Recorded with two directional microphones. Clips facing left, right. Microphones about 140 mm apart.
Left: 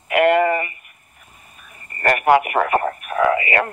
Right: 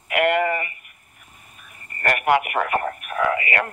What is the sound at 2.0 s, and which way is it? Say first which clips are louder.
Radio: left 4 dB; 35° left (ahead or behind).